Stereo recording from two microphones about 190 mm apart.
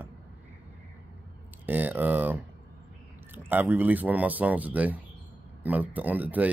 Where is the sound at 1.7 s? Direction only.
10° right (ahead or behind).